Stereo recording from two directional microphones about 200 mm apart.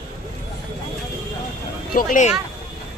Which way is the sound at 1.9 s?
45° left (ahead or behind).